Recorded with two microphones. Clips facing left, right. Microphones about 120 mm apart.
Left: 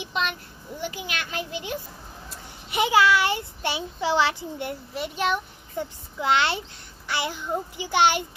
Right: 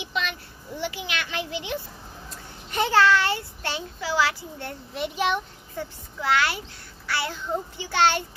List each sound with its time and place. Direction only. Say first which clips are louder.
0.0 s a child's voice: left 2 dB; 45° left (ahead or behind)
2.2 s a child's voice: even; 10° left (ahead or behind)
4.9 s a child's voice: right 1 dB; centre (ahead or behind)
5.8 s a child's voice: left 3 dB; 20° left (ahead or behind)